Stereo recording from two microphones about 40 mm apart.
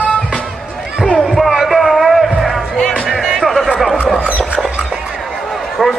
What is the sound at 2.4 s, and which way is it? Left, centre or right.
Music, centre.